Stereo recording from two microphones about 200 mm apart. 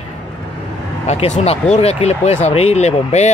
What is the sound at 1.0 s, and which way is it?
Speech, 35° left (ahead or behind).